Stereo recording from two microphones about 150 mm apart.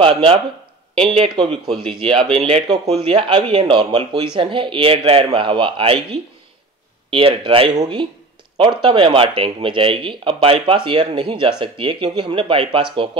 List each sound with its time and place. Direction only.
0.0 s speech: 35° right (ahead or behind)
7.1 s speech: 35° right (ahead or behind)